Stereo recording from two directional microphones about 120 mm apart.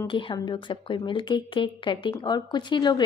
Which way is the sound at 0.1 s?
40° left (ahead or behind).